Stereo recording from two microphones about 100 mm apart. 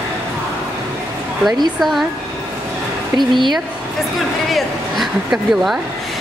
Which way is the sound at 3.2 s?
50° right (ahead or behind).